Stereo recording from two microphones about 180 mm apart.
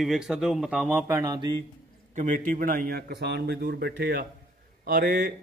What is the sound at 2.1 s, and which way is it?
A man's voice, 45° right (ahead or behind).